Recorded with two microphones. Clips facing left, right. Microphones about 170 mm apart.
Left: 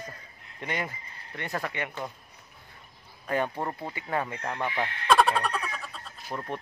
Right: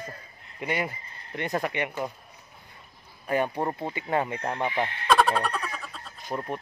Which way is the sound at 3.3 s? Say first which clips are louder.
Right 3 dB; 10° right (ahead or behind).